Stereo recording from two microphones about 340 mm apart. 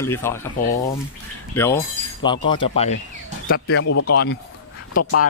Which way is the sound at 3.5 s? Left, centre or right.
Left.